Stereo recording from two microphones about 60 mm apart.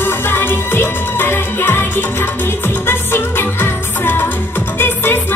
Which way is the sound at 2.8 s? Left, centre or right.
Left.